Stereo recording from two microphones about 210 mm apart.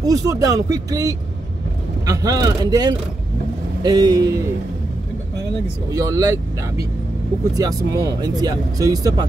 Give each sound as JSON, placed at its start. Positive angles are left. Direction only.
{"t": 0.0, "sound": "speech", "side_deg": -15}
{"t": 5.9, "sound": "speech", "side_deg": -15}